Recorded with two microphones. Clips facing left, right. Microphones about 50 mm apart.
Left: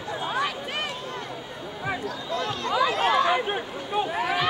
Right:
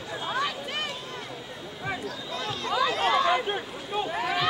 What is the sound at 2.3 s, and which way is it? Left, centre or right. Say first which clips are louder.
Chatter: left 3 dB; left.